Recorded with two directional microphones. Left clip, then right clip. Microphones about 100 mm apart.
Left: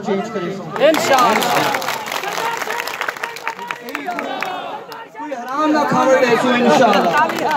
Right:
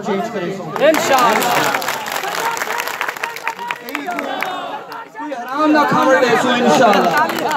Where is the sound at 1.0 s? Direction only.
50° left (ahead or behind).